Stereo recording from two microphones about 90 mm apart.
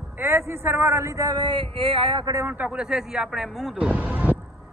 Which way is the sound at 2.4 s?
15° right (ahead or behind).